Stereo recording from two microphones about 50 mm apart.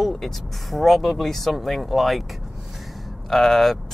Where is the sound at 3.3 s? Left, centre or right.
Centre.